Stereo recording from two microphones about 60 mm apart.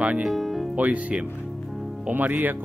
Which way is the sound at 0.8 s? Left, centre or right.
Right.